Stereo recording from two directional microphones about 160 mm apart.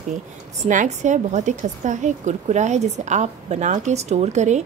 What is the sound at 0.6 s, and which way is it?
A woman's voice, 50° right (ahead or behind).